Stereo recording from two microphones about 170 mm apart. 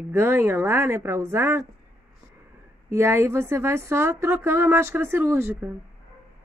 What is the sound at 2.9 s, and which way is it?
A woman's voice, 15° right (ahead or behind).